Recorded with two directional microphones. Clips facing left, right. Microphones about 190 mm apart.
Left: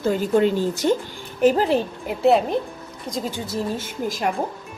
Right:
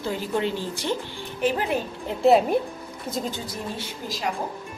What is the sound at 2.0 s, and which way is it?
A woman's voice, centre (ahead or behind).